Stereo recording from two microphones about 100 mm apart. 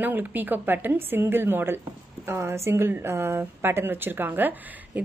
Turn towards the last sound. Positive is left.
turn(degrees=-20)  # may be behind; listen again after turning